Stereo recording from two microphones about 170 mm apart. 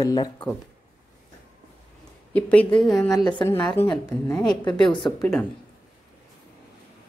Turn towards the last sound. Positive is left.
turn(degrees=5)  # may be behind; listen again after turning